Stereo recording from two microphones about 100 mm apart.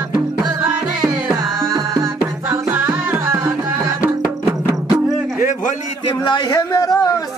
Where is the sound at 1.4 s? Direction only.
Centre (ahead or behind).